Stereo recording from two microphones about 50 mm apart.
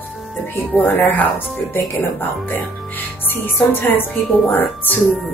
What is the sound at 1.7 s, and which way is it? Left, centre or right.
Speech, left.